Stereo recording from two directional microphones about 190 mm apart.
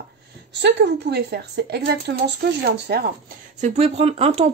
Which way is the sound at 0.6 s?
65° right (ahead or behind).